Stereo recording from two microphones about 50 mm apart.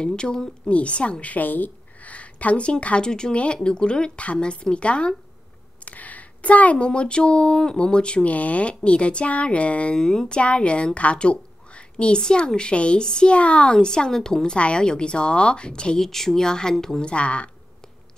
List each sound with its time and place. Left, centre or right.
0.0 s a woman's voice: centre
5.9 s a sound: left
6.8 s a woman's voice: centre
9.9 s a woman's voice: centre
16.1 s speech: centre
17.1 s a woman's voice: left